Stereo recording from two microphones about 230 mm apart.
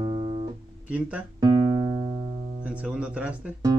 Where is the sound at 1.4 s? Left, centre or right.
Centre.